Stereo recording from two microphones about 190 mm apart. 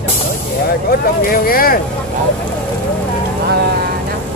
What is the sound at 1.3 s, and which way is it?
Speech, 50° left (ahead or behind).